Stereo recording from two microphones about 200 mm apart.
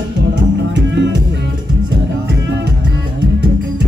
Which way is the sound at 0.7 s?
60° right (ahead or behind).